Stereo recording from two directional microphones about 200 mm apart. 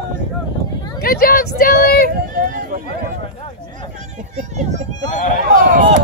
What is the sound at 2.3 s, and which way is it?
Speech, 45° right (ahead or behind).